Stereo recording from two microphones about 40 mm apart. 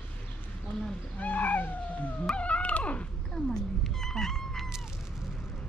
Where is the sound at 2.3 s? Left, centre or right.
Left.